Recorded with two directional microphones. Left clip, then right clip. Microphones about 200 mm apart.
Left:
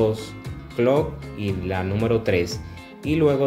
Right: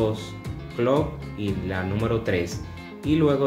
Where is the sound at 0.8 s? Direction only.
25° left (ahead or behind).